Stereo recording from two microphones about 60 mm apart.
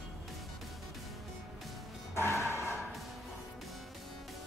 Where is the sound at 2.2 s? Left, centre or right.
Left.